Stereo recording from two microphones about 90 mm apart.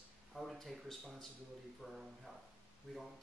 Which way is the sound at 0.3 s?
Centre (ahead or behind).